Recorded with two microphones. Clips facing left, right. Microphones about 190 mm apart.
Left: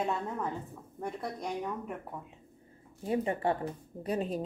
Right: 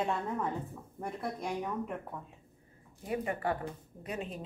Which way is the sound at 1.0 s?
5° right (ahead or behind).